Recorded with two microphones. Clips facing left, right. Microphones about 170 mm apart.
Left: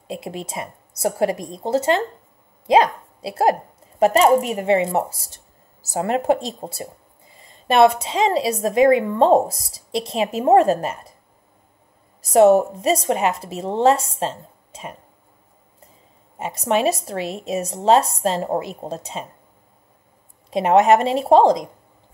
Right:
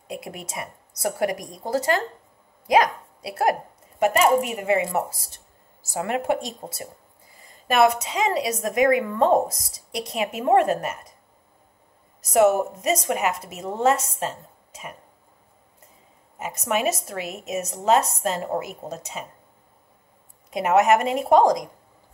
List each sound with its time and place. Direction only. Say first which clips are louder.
0.1 s a woman's voice: left 4 dB; 25° left (ahead or behind)
12.3 s a woman's voice: left 5 dB; 35° left (ahead or behind)
16.3 s a woman's voice: left 5 dB; 30° left (ahead or behind)
20.4 s a woman's voice: left 4 dB; 30° left (ahead or behind)